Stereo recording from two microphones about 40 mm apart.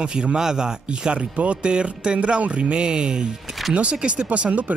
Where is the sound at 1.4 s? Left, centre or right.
Right.